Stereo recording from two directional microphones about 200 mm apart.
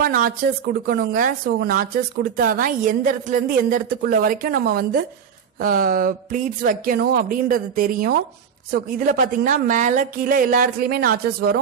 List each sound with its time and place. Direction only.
0.0 s speech: 45° right (ahead or behind)